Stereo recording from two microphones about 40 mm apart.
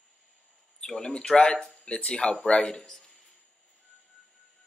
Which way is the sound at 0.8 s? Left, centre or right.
Centre.